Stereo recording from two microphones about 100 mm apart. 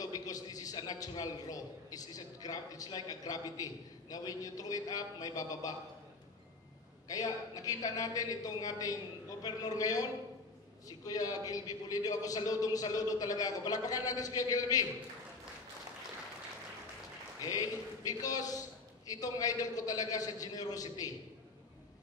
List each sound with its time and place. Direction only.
0.0 s a man's voice: 40° left (ahead or behind)
7.1 s a man's voice: 35° left (ahead or behind)
17.4 s a man's voice: 35° left (ahead or behind)